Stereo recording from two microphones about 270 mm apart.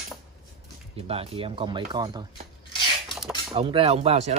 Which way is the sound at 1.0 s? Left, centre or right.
Right.